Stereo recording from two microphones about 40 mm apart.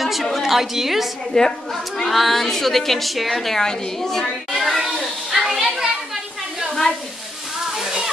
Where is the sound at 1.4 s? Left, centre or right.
Centre.